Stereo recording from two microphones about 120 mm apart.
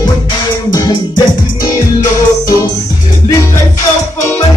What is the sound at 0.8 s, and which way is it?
Music, 35° left (ahead or behind).